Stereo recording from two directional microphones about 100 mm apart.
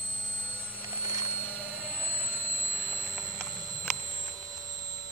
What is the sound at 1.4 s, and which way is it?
Vehicle, 10° right (ahead or behind).